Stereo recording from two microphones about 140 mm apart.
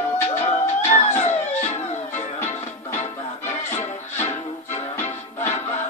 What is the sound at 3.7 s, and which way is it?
Music, 55° left (ahead or behind).